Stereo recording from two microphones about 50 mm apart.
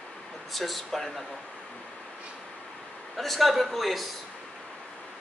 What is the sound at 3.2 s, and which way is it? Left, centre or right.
Speech, centre.